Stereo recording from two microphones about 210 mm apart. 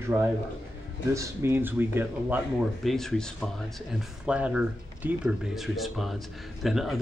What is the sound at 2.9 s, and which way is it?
Speech, centre (ahead or behind).